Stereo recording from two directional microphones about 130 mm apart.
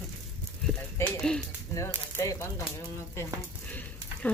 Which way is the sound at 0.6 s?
5° left (ahead or behind).